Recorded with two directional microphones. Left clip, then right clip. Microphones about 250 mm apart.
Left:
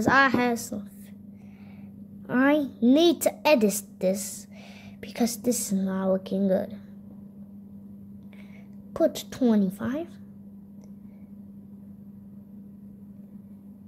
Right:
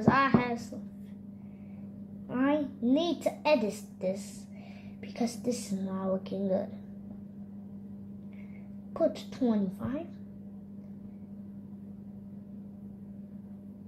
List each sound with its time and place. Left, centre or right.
0.0 s a woman's voice: left
2.2 s a woman's voice: left
8.9 s a woman's voice: left